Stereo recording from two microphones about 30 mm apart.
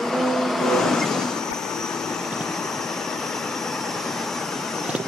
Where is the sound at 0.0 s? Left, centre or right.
Centre.